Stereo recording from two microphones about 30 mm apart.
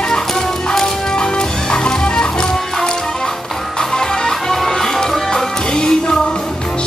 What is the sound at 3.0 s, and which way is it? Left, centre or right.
Music, centre.